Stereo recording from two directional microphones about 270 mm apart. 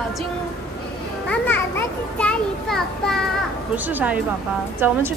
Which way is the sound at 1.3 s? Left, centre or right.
Centre.